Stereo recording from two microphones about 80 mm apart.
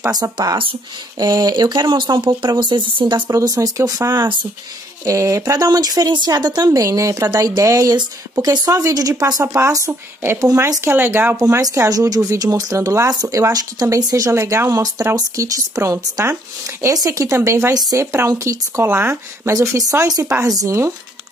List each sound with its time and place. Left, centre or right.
0.1 s speech: right
1.2 s speech: right
3.3 s speech: right
5.4 s speech: right
6.8 s speech: right
10.8 s speech: right
11.6 s speech: right
14.3 s speech: right